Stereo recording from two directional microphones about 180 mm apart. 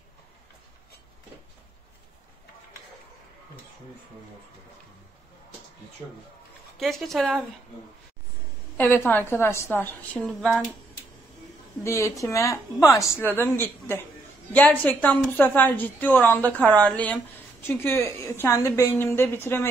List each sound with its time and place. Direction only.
6.8 s speech: centre (ahead or behind)
8.7 s a woman's voice: 10° left (ahead or behind)
11.8 s a woman's voice: 15° left (ahead or behind)